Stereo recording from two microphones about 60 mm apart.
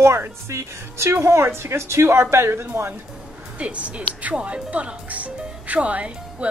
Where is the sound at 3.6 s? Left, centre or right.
Right.